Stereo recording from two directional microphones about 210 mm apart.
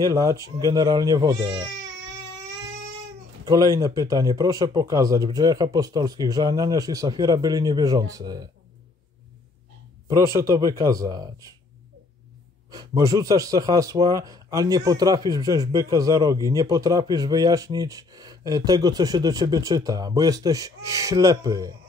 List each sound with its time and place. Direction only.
0.0 s speech: 15° right (ahead or behind)
3.4 s speech: 15° right (ahead or behind)
10.0 s speech: 15° right (ahead or behind)
12.7 s speech: 15° right (ahead or behind)